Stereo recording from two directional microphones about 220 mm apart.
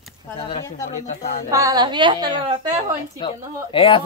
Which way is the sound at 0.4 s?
25° left (ahead or behind).